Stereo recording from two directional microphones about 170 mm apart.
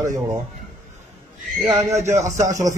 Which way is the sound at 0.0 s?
20° right (ahead or behind).